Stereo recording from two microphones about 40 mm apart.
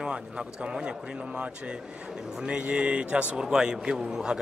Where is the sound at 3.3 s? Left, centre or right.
Centre.